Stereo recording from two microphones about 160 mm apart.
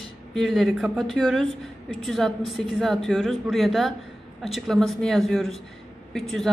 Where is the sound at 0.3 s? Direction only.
Centre (ahead or behind).